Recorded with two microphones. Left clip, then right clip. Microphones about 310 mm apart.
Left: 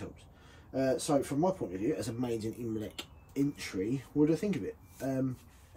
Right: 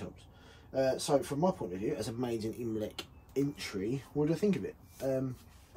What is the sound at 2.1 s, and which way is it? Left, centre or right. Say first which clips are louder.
Speech: even; centre.